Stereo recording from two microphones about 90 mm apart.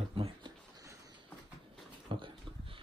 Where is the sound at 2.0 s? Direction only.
70° right (ahead or behind).